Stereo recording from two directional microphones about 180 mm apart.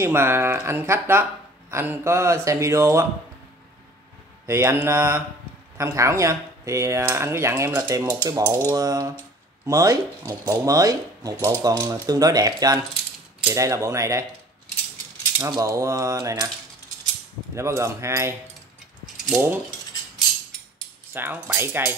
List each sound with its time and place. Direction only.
0.0 s speech: 15° right (ahead or behind)
4.5 s speech: 15° right (ahead or behind)
15.3 s speech: 15° right (ahead or behind)
17.6 s speech: 15° right (ahead or behind)
21.1 s speech: 10° right (ahead or behind)